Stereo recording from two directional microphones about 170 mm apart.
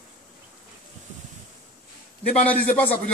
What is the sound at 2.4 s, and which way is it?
Speech, 10° left (ahead or behind).